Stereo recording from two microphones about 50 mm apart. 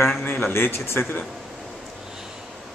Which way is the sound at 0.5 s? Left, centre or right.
Left.